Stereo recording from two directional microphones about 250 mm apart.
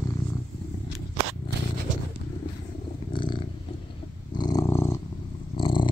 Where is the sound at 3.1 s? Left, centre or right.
Centre.